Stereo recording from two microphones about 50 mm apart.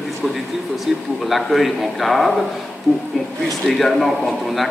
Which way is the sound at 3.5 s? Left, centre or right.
Centre.